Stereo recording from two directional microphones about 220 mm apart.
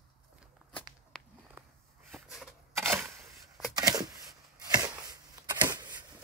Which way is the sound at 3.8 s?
15° right (ahead or behind).